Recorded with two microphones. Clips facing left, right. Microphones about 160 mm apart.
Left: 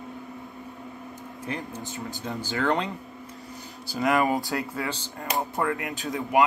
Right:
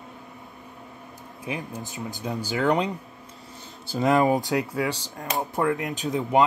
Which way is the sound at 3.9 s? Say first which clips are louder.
Right 3 dB; 25° right (ahead or behind).